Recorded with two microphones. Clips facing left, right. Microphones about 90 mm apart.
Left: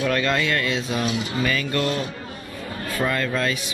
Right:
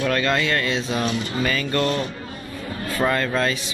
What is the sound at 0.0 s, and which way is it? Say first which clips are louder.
Speech: right 1 dB; 5° left (ahead or behind).